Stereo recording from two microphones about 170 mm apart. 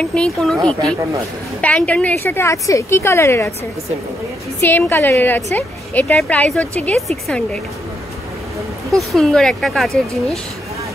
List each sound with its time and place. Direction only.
0.0 s speech: 5° left (ahead or behind)
1.6 s a woman's voice: 10° left (ahead or behind)
4.6 s a woman's voice: 10° left (ahead or behind)
8.9 s speech: centre (ahead or behind)